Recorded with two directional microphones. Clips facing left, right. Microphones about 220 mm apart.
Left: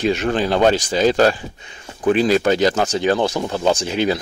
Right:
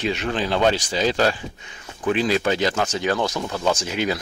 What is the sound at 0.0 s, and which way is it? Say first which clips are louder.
Speech: left 5 dB; 45° left (ahead or behind).